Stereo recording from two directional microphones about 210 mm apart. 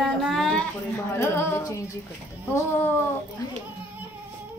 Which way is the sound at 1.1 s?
10° left (ahead or behind).